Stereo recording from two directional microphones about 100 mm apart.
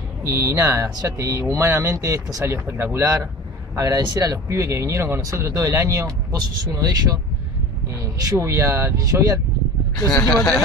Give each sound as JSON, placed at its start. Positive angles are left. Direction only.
{"t": 0.2, "sound": "speech", "side_deg": -30}
{"t": 2.4, "sound": "speech", "side_deg": -25}
{"t": 9.9, "sound": "speech", "side_deg": 25}